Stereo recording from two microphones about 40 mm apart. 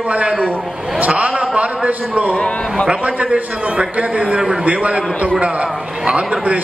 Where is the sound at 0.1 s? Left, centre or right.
Right.